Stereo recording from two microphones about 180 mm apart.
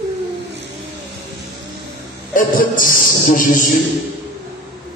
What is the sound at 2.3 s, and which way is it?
A man's voice, 50° left (ahead or behind).